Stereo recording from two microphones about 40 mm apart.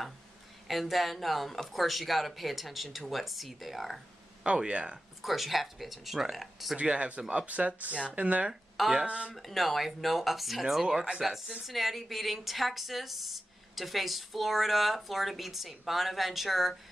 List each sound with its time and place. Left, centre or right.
0.7 s a woman's voice: centre
4.4 s speech: right
5.2 s a woman's voice: centre
6.8 s speech: right
7.4 s speech: right
8.0 s speech: right
9.3 s a woman's voice: centre